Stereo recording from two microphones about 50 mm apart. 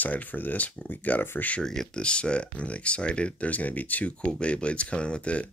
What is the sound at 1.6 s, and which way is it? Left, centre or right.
Speech, centre.